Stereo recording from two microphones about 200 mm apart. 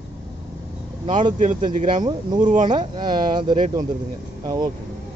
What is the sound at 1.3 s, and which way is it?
Speech, 40° right (ahead or behind).